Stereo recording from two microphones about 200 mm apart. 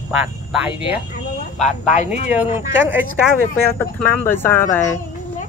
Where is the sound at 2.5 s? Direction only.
10° right (ahead or behind).